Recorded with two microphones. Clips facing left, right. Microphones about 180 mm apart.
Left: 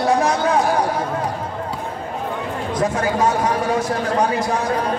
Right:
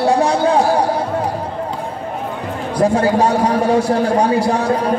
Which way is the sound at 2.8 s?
30° right (ahead or behind).